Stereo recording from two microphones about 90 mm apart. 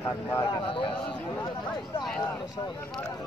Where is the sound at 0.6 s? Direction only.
75° left (ahead or behind).